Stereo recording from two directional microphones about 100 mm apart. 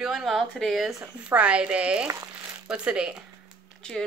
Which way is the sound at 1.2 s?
10° right (ahead or behind).